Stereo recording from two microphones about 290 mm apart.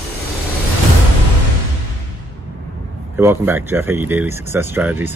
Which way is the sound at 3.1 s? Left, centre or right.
Centre.